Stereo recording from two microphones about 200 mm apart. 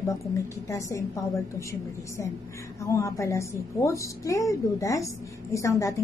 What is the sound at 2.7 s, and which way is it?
A woman's voice, 15° left (ahead or behind).